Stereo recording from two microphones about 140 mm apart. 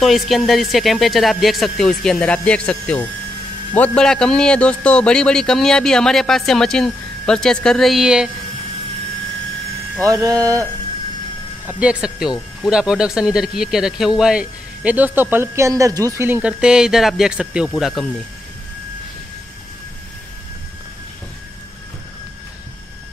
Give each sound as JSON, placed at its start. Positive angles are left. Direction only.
{"t": 0.0, "sound": "a man's voice", "side_deg": 0}
{"t": 10.0, "sound": "speech", "side_deg": -25}
{"t": 11.6, "sound": "a man's voice", "side_deg": -10}